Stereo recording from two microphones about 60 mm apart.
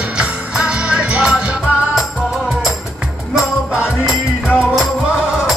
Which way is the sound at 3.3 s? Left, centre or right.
Centre.